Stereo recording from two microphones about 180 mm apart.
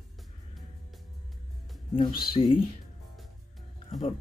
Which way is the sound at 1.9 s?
25° left (ahead or behind).